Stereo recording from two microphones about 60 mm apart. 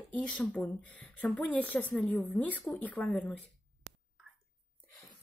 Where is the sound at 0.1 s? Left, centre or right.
Left.